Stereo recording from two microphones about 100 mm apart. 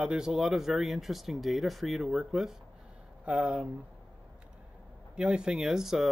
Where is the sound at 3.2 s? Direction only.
10° right (ahead or behind).